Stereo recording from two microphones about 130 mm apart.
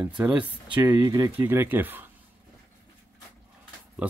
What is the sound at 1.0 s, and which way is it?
Speech, 25° right (ahead or behind).